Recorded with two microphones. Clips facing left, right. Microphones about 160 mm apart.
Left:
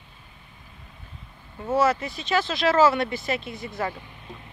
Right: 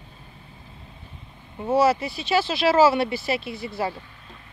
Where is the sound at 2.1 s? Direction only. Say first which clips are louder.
Right 2 dB; 10° right (ahead or behind).